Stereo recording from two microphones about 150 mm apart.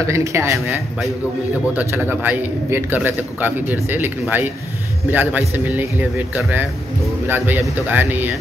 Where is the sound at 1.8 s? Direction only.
10° right (ahead or behind).